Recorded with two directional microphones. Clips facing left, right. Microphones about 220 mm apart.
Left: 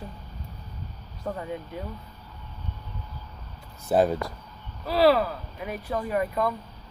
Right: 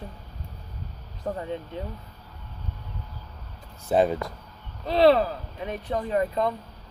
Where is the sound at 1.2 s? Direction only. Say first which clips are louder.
Right 2 dB; 25° right (ahead or behind).